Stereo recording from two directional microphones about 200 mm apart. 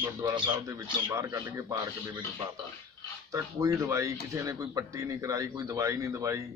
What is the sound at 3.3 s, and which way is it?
Speech, 15° right (ahead or behind).